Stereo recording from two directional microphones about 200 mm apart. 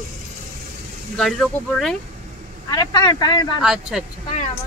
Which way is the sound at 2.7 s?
20° left (ahead or behind).